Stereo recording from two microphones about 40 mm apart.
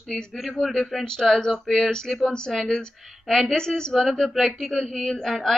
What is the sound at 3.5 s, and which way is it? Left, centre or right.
Speech, centre.